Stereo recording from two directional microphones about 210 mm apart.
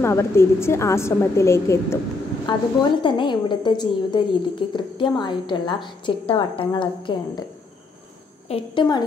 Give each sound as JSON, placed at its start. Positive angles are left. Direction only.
{"t": 0.0, "sound": "a woman's voice", "side_deg": 10}
{"t": 8.5, "sound": "a woman's voice", "side_deg": 20}